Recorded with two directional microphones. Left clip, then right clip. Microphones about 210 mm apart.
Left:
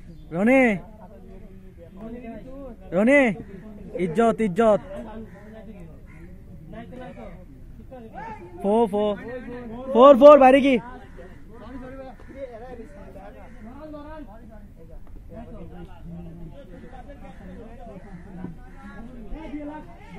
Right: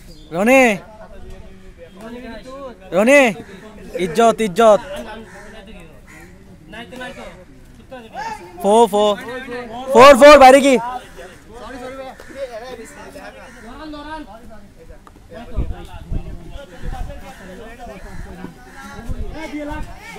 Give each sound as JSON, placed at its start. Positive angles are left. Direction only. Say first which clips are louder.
{"t": 0.3, "sound": "speech", "louder": "right 7 dB", "side_deg": -10}
{"t": 2.9, "sound": "speech", "louder": "right 7 dB", "side_deg": -15}
{"t": 8.6, "sound": "speech", "louder": "right 9 dB", "side_deg": -25}